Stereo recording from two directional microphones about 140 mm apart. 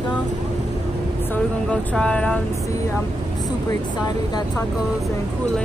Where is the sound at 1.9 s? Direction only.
5° left (ahead or behind).